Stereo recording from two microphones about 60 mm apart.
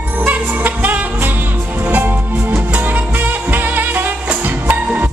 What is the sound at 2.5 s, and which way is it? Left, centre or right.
Music, right.